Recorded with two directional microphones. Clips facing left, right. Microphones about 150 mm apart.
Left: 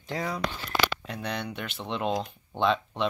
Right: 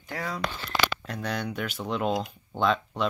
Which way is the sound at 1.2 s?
Centre (ahead or behind).